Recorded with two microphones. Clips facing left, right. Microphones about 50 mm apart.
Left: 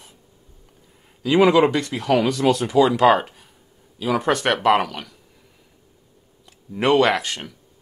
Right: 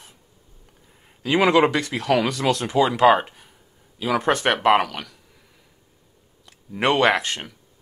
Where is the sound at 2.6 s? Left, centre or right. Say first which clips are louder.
Left 3 dB; right.